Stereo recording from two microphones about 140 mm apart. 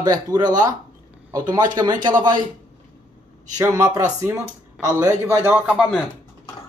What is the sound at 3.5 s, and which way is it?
Speech, 20° right (ahead or behind).